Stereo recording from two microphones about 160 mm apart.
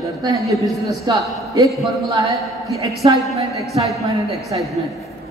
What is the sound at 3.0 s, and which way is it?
A woman's voice, 35° right (ahead or behind).